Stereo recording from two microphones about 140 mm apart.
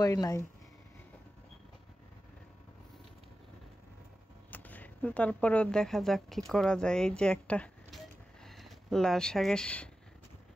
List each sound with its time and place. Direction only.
0.0 s speech: 25° left (ahead or behind)
4.5 s speech: 10° left (ahead or behind)